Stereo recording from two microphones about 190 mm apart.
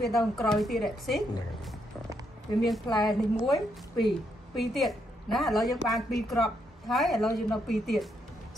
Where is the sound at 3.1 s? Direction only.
Centre (ahead or behind).